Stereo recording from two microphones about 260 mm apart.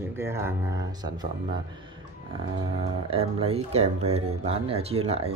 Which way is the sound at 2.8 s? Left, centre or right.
Right.